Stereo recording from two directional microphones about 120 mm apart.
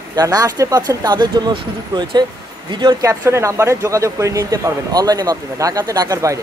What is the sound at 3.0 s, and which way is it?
Speech, 25° right (ahead or behind).